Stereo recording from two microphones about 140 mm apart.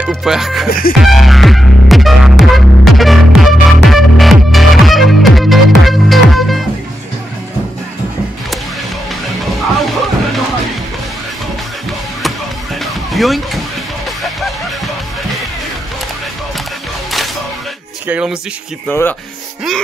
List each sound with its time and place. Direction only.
0.1 s speech: centre (ahead or behind)
0.7 s music: 90° left
1.0 s music: centre (ahead or behind)
12.8 s music: centre (ahead or behind)
18.0 s speech: 10° right (ahead or behind)
18.9 s speech: 15° left (ahead or behind)